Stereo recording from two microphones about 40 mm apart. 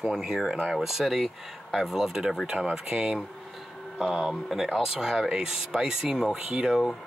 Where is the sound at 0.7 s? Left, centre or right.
Centre.